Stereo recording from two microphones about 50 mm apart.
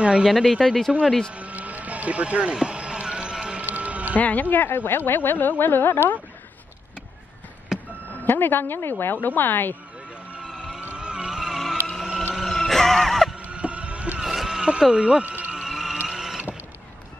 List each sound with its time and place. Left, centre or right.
0.0 s speech: centre
0.3 s speech: centre
1.3 s a sound: right
3.6 s music: right
4.2 s speech: left
8.2 s a woman's voice: left
10.5 s music: centre
13.5 s boat: right
14.2 s a sound: centre
14.7 s speech: centre
15.2 s speech: right
15.5 s vehicle: centre